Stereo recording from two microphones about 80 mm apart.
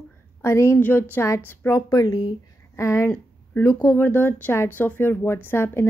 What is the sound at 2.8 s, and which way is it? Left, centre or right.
Speech, left.